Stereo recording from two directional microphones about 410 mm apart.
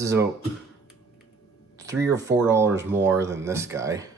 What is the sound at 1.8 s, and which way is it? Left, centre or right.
Speech, centre.